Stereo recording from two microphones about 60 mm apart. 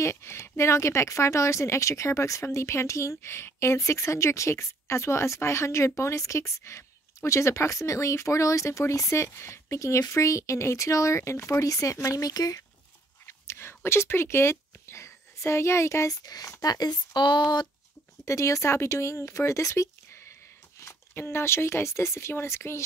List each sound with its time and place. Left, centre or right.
0.0 s speech: left
11.6 s speech: left
13.3 s a sound: left
16.3 s speech: left
18.2 s speech: left
20.8 s speech: left